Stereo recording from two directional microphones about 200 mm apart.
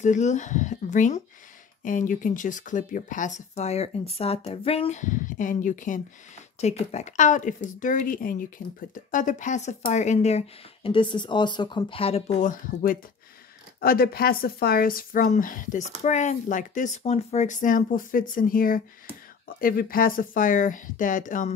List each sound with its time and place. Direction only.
0.0 s a woman's voice: 35° left (ahead or behind)